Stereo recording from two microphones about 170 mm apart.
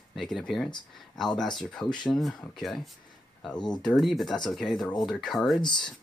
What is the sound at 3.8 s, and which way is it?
Speech, centre (ahead or behind).